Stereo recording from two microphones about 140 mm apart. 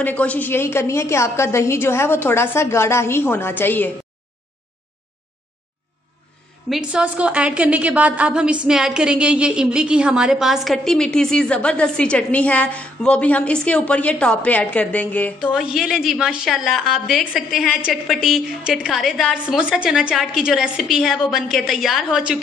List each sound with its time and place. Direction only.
0.0 s a woman's voice: 10° left (ahead or behind)
6.7 s a woman's voice: 5° right (ahead or behind); by 15.5 s 10° left (ahead or behind)
15.5 s a woman's voice: 5° right (ahead or behind)